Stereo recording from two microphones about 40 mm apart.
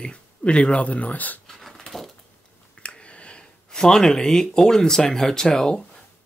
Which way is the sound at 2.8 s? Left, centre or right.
Left.